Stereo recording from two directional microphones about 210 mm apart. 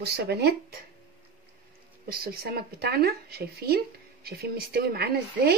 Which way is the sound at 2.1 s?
45° right (ahead or behind).